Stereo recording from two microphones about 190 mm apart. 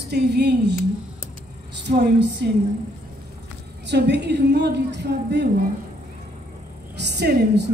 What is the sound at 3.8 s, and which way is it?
A woman's voice, 65° right (ahead or behind).